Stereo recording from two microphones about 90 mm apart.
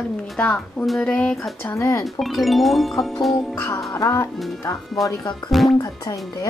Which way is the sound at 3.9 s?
35° left (ahead or behind).